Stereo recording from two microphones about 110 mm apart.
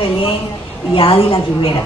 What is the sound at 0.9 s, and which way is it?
Speech, 55° left (ahead or behind).